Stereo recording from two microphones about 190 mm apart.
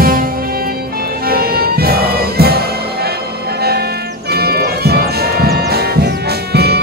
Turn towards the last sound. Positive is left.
turn(degrees=-60)  # may be behind; listen again after turning